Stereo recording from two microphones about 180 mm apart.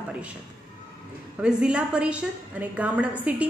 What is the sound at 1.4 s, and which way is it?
A woman's voice, 5° right (ahead or behind).